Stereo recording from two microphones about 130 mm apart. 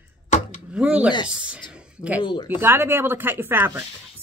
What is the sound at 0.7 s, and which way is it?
Speech, 10° right (ahead or behind).